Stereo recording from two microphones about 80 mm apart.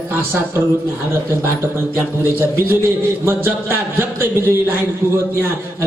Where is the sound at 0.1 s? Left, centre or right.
Right.